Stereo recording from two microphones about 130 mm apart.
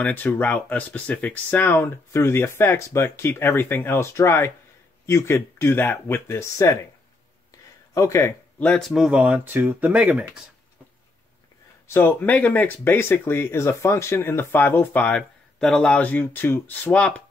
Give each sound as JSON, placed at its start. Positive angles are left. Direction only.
{"t": 0.0, "sound": "speech", "side_deg": 15}
{"t": 7.9, "sound": "speech", "side_deg": 25}
{"t": 8.5, "sound": "speech", "side_deg": 5}
{"t": 11.9, "sound": "speech", "side_deg": 15}